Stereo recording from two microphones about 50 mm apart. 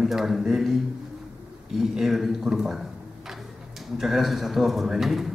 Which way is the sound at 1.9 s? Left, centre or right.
Centre.